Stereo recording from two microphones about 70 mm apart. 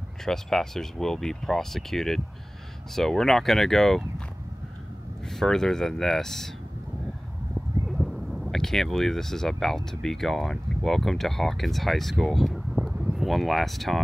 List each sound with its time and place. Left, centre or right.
0.2 s speech: centre
5.3 s speech: centre
8.0 s speech: centre
12.7 s a sound: centre